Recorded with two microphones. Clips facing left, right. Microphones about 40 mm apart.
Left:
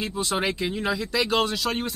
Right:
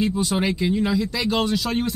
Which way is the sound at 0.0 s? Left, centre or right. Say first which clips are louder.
Right 4 dB; centre.